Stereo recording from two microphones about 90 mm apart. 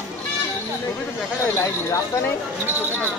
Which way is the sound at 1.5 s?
25° left (ahead or behind).